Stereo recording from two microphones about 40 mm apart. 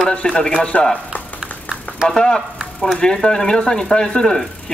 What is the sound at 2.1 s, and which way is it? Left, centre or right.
Speech, centre.